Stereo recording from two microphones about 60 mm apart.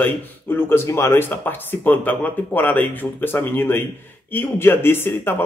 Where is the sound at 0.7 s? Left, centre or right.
Left.